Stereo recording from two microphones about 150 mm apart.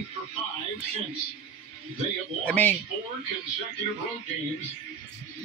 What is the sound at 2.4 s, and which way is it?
Speech, 10° left (ahead or behind).